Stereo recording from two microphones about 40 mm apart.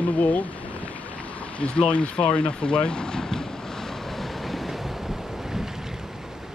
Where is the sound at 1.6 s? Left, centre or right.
Left; by 5.7 s centre.